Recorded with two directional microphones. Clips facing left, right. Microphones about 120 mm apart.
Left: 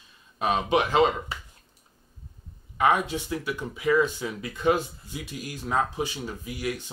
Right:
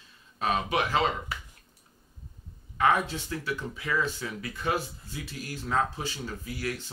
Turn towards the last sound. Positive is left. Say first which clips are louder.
# left 3 dB
turn(degrees=15)  # may be behind; listen again after turning